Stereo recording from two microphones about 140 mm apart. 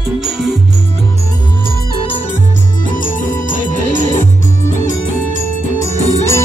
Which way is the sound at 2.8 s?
75° left (ahead or behind).